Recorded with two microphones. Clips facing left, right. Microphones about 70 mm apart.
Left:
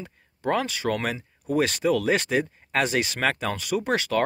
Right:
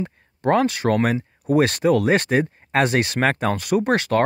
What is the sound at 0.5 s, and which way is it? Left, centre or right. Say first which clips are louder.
Speech: right 7 dB; right.